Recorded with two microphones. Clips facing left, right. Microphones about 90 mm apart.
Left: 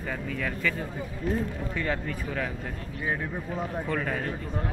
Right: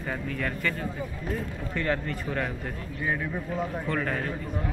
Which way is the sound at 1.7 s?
10° left (ahead or behind).